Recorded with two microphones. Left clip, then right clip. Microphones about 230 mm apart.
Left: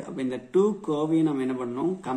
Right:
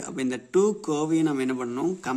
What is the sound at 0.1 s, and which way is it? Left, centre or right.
A man's voice, right.